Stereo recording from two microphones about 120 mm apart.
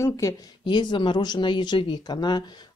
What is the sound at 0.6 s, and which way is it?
Speech, 40° left (ahead or behind).